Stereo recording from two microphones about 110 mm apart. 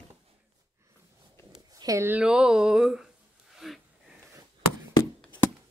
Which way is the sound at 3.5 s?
5° right (ahead or behind).